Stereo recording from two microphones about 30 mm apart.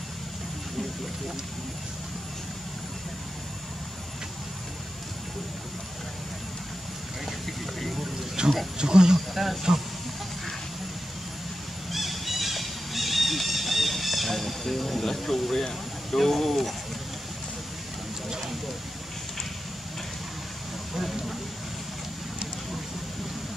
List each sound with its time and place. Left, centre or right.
8.4 s a sound: right
8.7 s speech: right
9.3 s speech: centre
11.9 s a sound: centre
15.1 s speech: centre
20.9 s vehicle: centre